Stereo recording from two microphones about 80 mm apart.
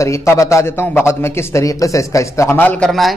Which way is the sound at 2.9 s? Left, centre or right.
Centre.